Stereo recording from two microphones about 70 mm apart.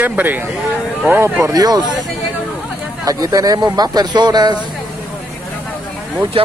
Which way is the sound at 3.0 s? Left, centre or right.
Right.